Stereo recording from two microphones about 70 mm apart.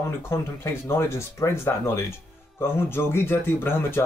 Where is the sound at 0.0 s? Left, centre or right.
Left.